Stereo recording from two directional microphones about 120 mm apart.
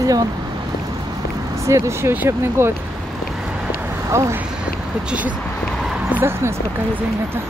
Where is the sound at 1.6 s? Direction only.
25° right (ahead or behind).